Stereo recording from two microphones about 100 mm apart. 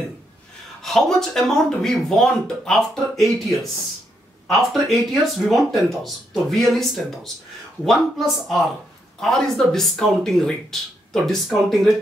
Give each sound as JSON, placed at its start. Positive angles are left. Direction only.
{"t": 0.8, "sound": "speech", "side_deg": 5}